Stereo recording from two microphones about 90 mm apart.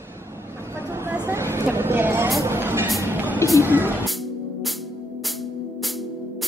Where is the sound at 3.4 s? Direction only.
35° left (ahead or behind).